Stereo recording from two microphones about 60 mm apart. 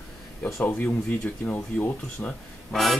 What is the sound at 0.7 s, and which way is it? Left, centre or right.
Speech, left.